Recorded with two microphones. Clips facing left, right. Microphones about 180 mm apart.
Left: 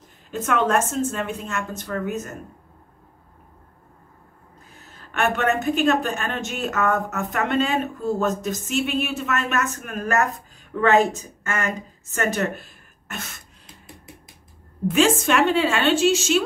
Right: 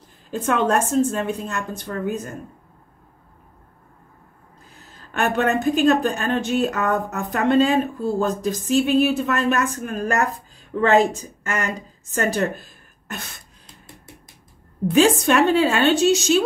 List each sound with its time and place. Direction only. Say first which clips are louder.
0.3 s a woman's voice: right 1 dB; 35° right (ahead or behind)
5.1 s a woman's voice: right 2 dB; 35° right (ahead or behind)
11.5 s a woman's voice: right 1 dB; 35° right (ahead or behind)
14.9 s a woman's voice: right 3 dB; 40° right (ahead or behind)